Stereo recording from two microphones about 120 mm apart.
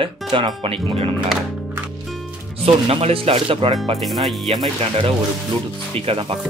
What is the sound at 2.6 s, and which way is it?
Speech, 55° right (ahead or behind).